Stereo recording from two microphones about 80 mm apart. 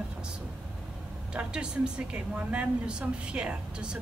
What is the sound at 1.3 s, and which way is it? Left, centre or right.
A woman's voice, centre.